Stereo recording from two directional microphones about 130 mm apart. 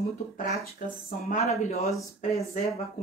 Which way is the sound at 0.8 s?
90° left.